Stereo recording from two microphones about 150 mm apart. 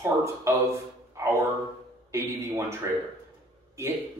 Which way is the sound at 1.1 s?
20° right (ahead or behind).